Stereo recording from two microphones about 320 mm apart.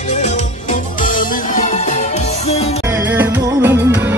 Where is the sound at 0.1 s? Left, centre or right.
Left.